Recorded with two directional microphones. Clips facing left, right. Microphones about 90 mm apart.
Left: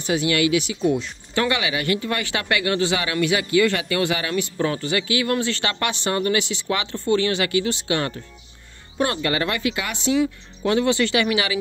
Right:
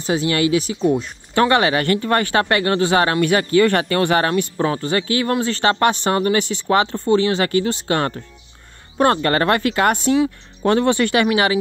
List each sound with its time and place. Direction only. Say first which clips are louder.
0.0 s speech: right 2 dB; 35° right (ahead or behind)